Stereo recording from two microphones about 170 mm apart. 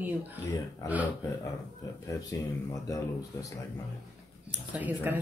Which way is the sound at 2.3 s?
15° left (ahead or behind).